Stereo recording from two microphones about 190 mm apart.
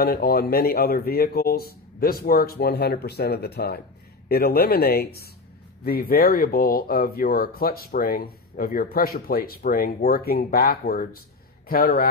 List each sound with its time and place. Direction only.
0.0 s speech: 55° left (ahead or behind)